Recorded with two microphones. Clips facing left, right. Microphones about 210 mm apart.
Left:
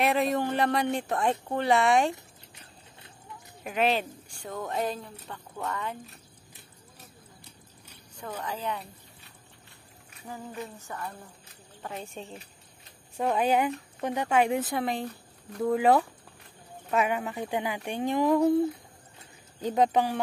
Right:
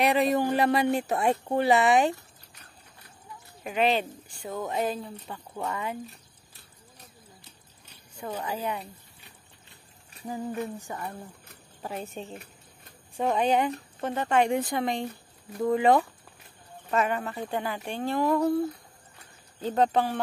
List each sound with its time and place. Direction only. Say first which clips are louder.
0.0 s speech: right 2 dB; centre (ahead or behind)
2.1 s a sound: left 2 dB; 25° left (ahead or behind)
3.6 s speech: right 1 dB; centre (ahead or behind)
8.2 s speech: right 3 dB; 10° right (ahead or behind)
10.9 s speech: right 2 dB; 15° right (ahead or behind); by 18.6 s 15° left (ahead or behind)
19.6 s speech: even; 10° left (ahead or behind)